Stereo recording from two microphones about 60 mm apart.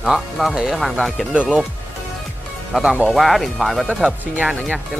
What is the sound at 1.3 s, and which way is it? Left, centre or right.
Speech, centre.